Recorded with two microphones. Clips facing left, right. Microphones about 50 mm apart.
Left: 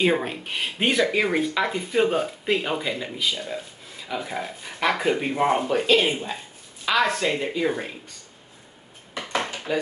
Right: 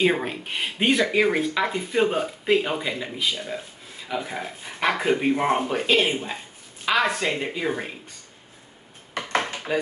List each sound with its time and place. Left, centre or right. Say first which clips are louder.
0.0 s speech: even; centre
9.7 s speech: even; centre